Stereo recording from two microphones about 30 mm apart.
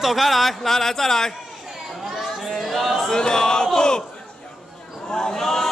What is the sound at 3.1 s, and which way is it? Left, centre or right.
Speech, left.